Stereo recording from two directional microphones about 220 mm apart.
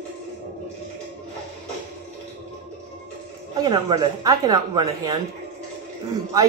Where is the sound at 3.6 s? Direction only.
15° right (ahead or behind).